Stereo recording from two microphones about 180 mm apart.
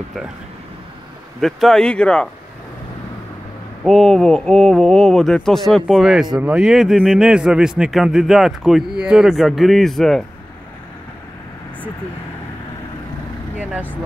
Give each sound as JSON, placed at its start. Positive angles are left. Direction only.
{"t": 1.4, "sound": "a man's voice", "side_deg": 0}
{"t": 3.8, "sound": "a man's voice", "side_deg": 0}
{"t": 13.6, "sound": "speech", "side_deg": -10}